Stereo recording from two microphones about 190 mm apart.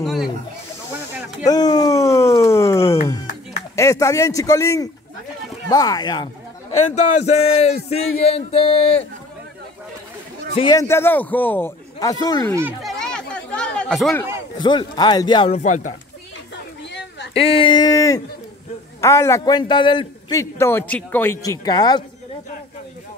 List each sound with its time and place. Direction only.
0.0 s snake: centre (ahead or behind)
1.4 s a sound: 20° left (ahead or behind)
3.7 s a man's voice: 15° left (ahead or behind)
6.7 s speech: 35° left (ahead or behind)
10.5 s a man's voice: 25° left (ahead or behind)
13.0 s chatter: 5° left (ahead or behind)
14.6 s speech: 25° left (ahead or behind); by 15.9 s 40° left (ahead or behind)
17.3 s a man's voice: 30° left (ahead or behind)